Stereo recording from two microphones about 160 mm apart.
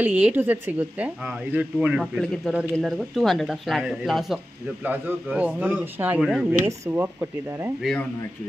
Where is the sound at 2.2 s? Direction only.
5° left (ahead or behind).